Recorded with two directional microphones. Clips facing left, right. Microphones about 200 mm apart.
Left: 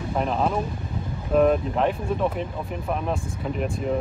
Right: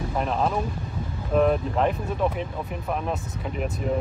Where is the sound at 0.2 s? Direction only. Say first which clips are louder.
Left 1 dB; centre (ahead or behind).